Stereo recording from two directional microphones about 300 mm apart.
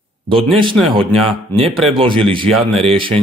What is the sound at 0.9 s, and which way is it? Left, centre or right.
Speech, centre.